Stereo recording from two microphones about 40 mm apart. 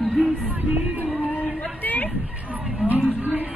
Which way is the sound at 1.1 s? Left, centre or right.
Left.